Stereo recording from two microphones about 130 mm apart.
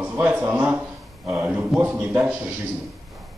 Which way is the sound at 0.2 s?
15° right (ahead or behind).